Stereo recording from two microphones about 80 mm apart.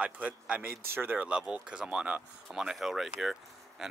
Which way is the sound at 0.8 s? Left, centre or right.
Right.